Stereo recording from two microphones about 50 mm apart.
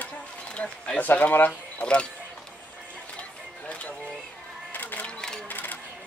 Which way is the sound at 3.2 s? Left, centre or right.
Left.